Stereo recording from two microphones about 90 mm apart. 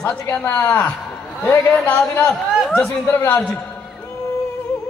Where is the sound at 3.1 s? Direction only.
30° left (ahead or behind).